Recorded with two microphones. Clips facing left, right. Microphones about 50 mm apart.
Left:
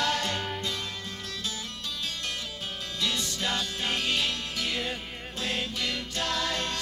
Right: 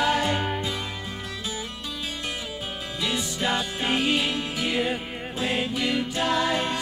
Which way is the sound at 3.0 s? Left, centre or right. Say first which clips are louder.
Right 4 dB; centre.